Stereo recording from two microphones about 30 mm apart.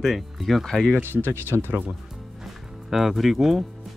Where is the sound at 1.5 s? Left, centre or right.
Right.